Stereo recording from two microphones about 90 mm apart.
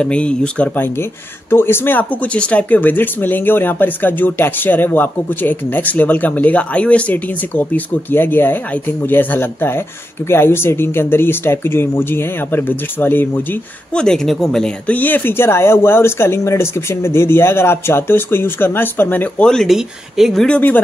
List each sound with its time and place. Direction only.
0.0 s speech: 10° left (ahead or behind)
13.9 s speech: 5° left (ahead or behind)
14.9 s speech: 20° left (ahead or behind)
19.4 s speech: 5° left (ahead or behind)
20.4 s speech: 15° left (ahead or behind)